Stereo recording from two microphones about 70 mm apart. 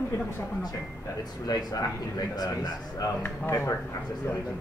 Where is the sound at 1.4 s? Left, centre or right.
Left.